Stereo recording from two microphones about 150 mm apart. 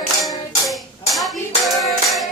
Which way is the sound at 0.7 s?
Centre (ahead or behind).